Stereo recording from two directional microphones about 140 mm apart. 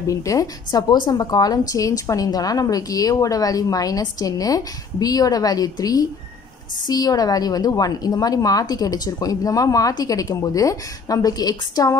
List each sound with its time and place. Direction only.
0.0 s a woman's voice: 25° left (ahead or behind)